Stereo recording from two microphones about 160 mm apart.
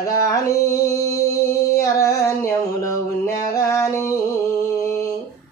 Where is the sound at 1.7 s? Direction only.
20° left (ahead or behind).